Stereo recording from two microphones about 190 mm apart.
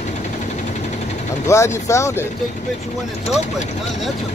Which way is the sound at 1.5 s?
15° left (ahead or behind).